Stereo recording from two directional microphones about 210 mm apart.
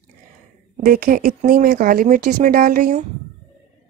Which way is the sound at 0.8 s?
45° right (ahead or behind).